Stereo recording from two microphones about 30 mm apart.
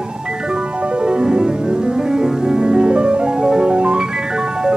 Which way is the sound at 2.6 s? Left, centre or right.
Right.